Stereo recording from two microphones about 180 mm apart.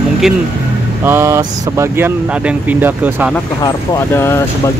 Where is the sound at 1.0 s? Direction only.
15° right (ahead or behind).